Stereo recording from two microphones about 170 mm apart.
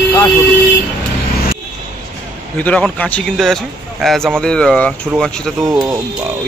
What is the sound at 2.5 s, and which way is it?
Speech, 10° left (ahead or behind).